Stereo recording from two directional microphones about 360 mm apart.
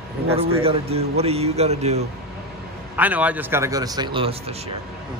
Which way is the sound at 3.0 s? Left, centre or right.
Centre.